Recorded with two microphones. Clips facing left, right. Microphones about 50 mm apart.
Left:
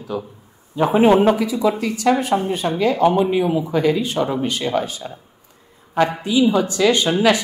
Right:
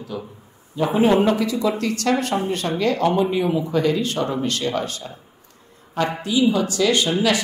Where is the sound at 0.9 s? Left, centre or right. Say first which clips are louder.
Left 4 dB; left.